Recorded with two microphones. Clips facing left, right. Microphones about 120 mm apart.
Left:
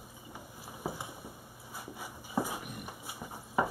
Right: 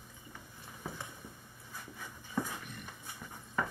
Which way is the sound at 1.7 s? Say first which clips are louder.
Left 4 dB; 15° left (ahead or behind).